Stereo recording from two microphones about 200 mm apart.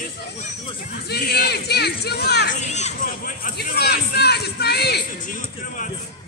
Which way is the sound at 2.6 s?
35° left (ahead or behind).